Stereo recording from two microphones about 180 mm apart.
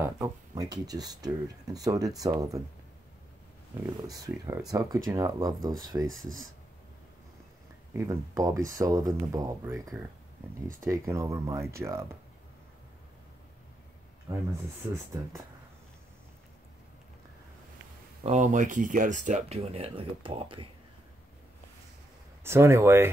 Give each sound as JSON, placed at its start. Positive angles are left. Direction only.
{"t": 0.0, "sound": "speech", "side_deg": -15}
{"t": 3.8, "sound": "speech", "side_deg": -20}
{"t": 6.0, "sound": "speech", "side_deg": 0}
{"t": 7.9, "sound": "speech", "side_deg": -15}
{"t": 15.1, "sound": "speech", "side_deg": -15}
{"t": 18.2, "sound": "speech", "side_deg": -40}
{"t": 22.4, "sound": "speech", "side_deg": -15}